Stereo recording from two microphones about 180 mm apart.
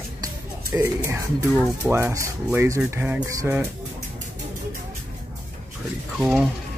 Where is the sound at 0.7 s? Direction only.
15° right (ahead or behind).